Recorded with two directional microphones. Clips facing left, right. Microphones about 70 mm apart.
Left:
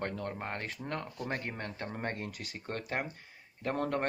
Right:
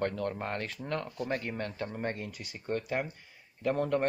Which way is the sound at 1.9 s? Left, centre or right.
Left.